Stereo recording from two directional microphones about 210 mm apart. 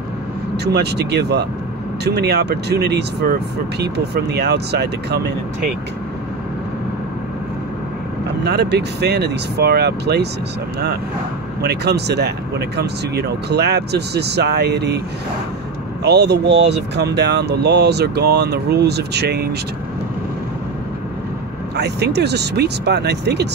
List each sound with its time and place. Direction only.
0.7 s speech: 50° right (ahead or behind)
8.5 s speech: 50° right (ahead or behind)
11.6 s speech: 50° right (ahead or behind)
16.0 s speech: 55° right (ahead or behind)
21.7 s speech: 50° right (ahead or behind)